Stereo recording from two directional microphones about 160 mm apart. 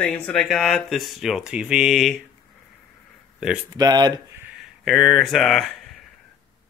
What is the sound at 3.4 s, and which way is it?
Speech, 5° right (ahead or behind).